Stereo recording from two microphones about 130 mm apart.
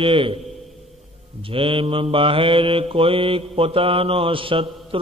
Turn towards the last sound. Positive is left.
turn(degrees=-45)  # may be behind; listen again after turning